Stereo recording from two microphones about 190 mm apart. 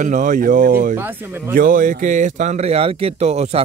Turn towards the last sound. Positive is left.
turn(degrees=-35)  # may be behind; listen again after turning